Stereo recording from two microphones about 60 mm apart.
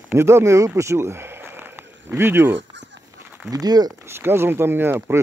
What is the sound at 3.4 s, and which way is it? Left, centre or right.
Speech, right.